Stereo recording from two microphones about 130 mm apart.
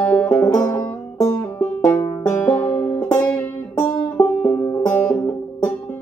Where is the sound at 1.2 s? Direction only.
10° left (ahead or behind).